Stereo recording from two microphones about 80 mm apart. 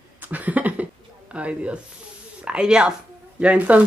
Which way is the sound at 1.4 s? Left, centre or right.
Centre.